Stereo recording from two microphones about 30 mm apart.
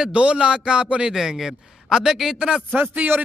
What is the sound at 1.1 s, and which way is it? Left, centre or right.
A man's voice, centre.